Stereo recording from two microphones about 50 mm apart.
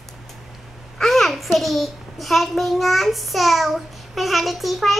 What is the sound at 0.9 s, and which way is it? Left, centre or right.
A child's voice, centre.